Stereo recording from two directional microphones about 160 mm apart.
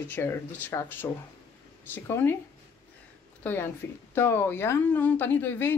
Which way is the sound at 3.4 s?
15° left (ahead or behind).